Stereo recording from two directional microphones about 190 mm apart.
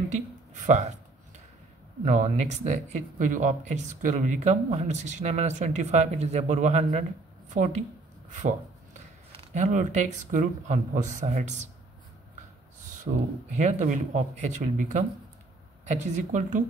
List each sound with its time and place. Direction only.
2.0 s speech: 40° right (ahead or behind)
8.4 s a sound: 40° right (ahead or behind)
9.4 s speech: 40° right (ahead or behind)
13.0 s speech: 40° right (ahead or behind)